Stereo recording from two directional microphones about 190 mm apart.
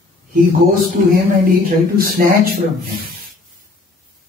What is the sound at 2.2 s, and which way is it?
Speech, 50° right (ahead or behind).